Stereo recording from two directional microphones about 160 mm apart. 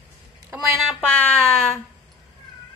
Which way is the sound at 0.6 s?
5° left (ahead or behind).